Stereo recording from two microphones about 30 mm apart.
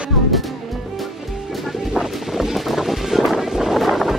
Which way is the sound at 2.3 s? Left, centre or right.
Centre.